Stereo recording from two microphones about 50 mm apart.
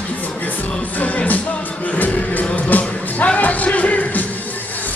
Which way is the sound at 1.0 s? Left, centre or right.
Left.